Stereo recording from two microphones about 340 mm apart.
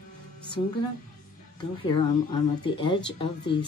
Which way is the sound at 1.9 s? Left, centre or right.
Centre.